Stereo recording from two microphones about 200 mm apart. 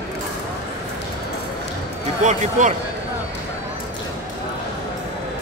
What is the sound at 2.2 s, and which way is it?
Speech, 40° right (ahead or behind).